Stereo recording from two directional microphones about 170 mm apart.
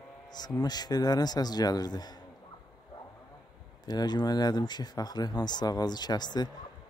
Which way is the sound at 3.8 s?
25° left (ahead or behind).